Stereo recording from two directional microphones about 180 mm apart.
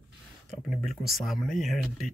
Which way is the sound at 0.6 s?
Centre (ahead or behind).